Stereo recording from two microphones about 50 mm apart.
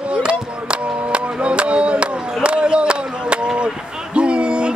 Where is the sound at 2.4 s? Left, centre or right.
Centre.